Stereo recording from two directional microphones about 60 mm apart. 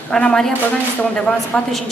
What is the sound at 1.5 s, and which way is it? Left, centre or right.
Speech, left.